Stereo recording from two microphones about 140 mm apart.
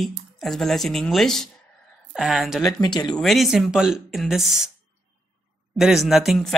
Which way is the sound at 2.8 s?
30° left (ahead or behind).